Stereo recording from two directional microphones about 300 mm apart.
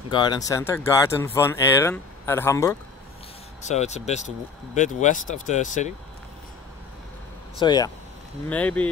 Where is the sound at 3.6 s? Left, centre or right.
Left.